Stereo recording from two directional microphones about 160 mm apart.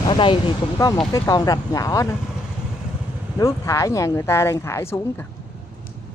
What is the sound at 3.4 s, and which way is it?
Speech, 20° left (ahead or behind).